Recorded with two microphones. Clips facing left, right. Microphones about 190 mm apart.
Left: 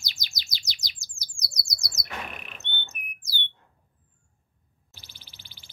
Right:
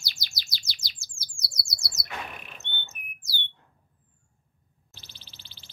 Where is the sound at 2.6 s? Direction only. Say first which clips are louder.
Left 2 dB; 20° left (ahead or behind).